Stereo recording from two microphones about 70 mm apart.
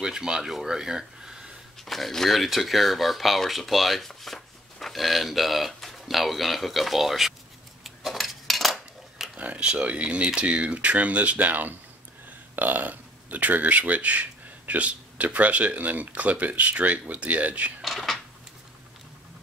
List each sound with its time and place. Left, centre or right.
0.0 s speech: centre
1.9 s speech: centre
7.8 s cutlery: centre
9.4 s speech: centre
17.8 s speech: centre